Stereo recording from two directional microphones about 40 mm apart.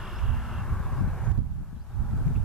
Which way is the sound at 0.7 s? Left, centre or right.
Centre.